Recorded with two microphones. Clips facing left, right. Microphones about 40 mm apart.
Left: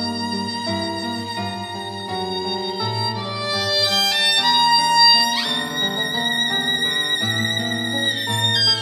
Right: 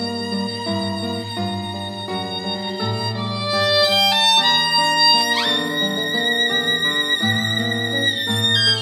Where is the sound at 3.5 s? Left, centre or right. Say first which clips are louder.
Right 5 dB; centre.